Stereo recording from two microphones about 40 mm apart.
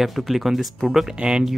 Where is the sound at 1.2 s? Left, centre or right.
Right.